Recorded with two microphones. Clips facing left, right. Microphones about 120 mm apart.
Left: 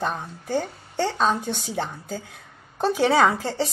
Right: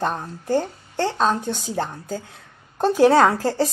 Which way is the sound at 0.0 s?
Centre (ahead or behind).